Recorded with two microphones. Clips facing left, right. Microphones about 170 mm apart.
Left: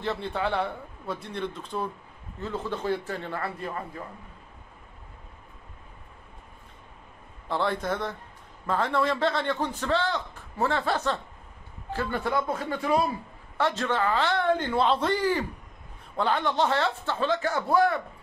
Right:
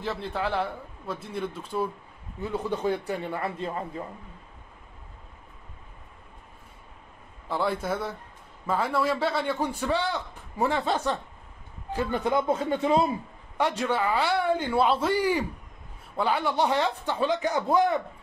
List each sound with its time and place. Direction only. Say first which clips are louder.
0.0 s a man's voice: left 1 dB; centre (ahead or behind); by 4.0 s 25° right (ahead or behind)
7.4 s a man's voice: even; 5° right (ahead or behind)